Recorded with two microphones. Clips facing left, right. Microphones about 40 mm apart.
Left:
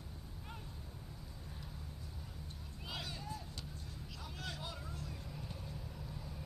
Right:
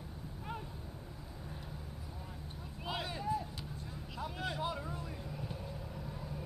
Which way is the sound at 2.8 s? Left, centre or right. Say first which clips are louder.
Right 7 dB; right.